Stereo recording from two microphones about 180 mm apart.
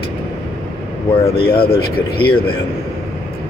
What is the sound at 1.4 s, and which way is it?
Speech, 60° left (ahead or behind).